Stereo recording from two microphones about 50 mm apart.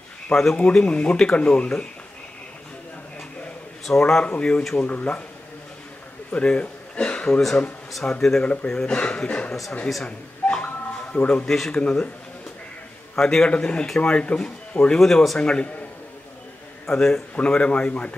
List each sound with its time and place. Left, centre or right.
0.3 s a man's voice: centre
0.8 s speech: left
4.0 s a man's voice: centre
4.8 s speech: left
6.3 s a man's voice: left
8.8 s speech: left
9.5 s speech: centre
10.0 s speech: left
11.4 s a man's voice: centre
11.8 s speech: left
13.1 s a man's voice: centre
15.0 s a man's voice: centre; by 15.8 s left
16.8 s a man's voice: centre
17.4 s speech: left